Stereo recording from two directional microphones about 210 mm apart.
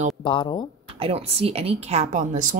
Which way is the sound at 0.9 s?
25° right (ahead or behind).